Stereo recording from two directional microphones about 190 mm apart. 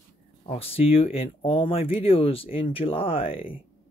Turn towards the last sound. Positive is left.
turn(degrees=30)  # may be behind; listen again after turning